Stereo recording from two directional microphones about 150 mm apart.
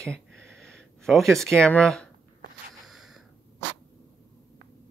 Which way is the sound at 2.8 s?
Centre (ahead or behind).